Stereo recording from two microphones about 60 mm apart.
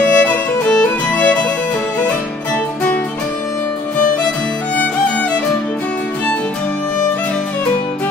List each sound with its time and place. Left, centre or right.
0.0 s music: left
0.7 s music: centre